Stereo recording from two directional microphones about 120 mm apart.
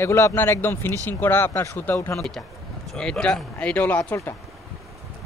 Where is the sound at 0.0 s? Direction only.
25° left (ahead or behind).